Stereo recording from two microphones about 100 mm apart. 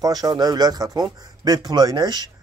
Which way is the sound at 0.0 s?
40° right (ahead or behind).